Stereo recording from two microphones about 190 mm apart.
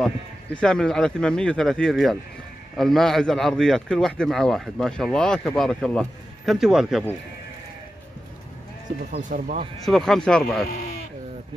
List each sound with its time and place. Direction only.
0.0 s speech: 5° left (ahead or behind)
9.1 s speech: 40° right (ahead or behind)
9.8 s speech: centre (ahead or behind)
10.6 s speech: 55° left (ahead or behind)